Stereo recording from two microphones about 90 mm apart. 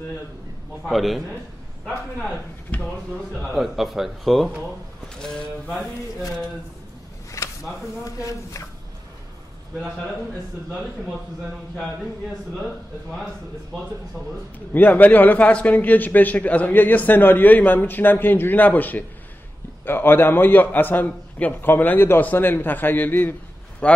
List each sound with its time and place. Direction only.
0.8 s a man's voice: centre (ahead or behind)
2.7 s speech: 15° left (ahead or behind)
3.5 s a man's voice: centre (ahead or behind)
7.4 s a sound: 35° left (ahead or behind)
8.0 s speech: 40° left (ahead or behind)
14.7 s a man's voice: 20° left (ahead or behind)